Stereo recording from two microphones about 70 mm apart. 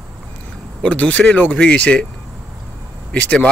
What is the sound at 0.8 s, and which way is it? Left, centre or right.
Speech, left.